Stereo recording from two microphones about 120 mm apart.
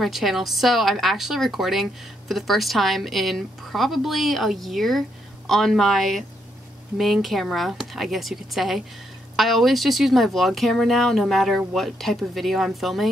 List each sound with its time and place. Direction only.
0.0 s speech: centre (ahead or behind)